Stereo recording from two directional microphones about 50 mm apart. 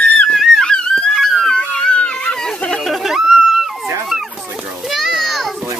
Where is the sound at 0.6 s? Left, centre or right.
Centre.